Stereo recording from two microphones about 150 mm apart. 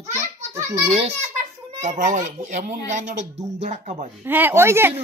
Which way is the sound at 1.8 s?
55° right (ahead or behind).